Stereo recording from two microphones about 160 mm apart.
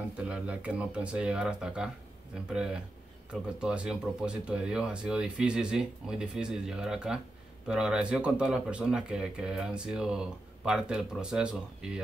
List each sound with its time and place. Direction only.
0.2 s speech: 5° right (ahead or behind)